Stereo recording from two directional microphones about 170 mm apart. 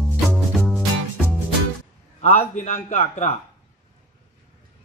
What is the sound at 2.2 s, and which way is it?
A man's voice, 45° left (ahead or behind).